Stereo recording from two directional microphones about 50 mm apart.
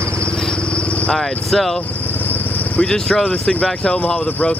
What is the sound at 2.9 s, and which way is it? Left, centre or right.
Speech, centre.